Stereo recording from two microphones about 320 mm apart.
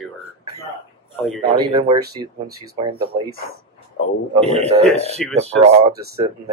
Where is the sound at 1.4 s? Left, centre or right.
Centre.